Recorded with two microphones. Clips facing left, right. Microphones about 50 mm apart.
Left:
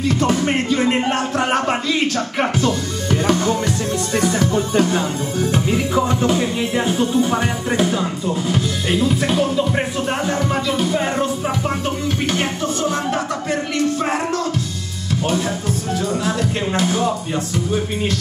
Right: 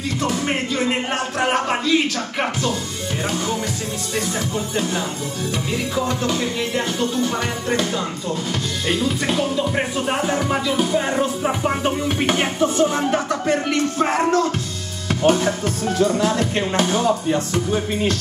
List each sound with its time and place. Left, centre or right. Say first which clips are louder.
0.2 s music: left 4 dB; left
2.6 s speech: left 4 dB; left
5.9 s music: left 4 dB; left
8.0 s speech: left 3 dB; centre
11.6 s music: right 1 dB; centre
16.3 s speech: even; right